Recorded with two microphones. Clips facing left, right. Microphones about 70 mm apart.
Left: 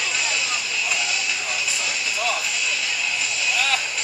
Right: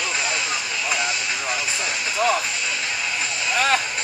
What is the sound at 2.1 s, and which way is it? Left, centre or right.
Music, right.